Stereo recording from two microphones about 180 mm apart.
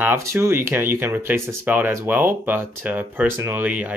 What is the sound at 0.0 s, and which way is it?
Speech, 15° right (ahead or behind).